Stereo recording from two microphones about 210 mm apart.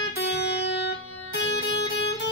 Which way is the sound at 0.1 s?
50° left (ahead or behind).